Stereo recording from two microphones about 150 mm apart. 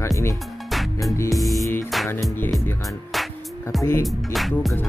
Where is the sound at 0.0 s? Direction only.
20° left (ahead or behind).